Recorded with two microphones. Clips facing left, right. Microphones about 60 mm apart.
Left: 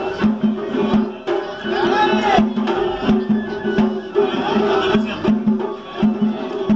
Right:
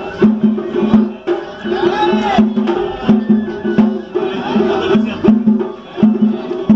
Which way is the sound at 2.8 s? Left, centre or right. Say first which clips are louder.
Right 4 dB; centre.